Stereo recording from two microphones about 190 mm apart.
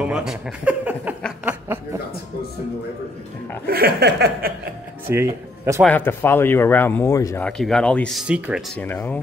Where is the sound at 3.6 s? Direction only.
55° right (ahead or behind).